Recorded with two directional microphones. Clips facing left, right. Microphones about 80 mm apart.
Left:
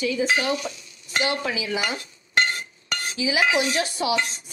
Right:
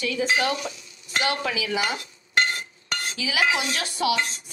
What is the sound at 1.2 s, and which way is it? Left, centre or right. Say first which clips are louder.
Speech: even; left.